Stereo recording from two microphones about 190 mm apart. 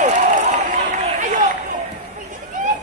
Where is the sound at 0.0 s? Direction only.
40° right (ahead or behind).